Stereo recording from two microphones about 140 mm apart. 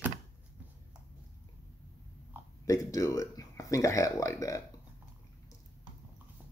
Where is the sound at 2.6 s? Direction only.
25° left (ahead or behind).